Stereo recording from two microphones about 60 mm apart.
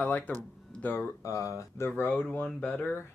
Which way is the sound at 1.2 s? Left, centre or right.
Left.